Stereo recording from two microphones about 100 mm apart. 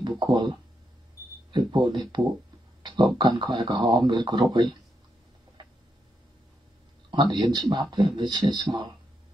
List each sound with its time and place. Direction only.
0.0 s speech: 50° right (ahead or behind)
7.1 s speech: 50° right (ahead or behind)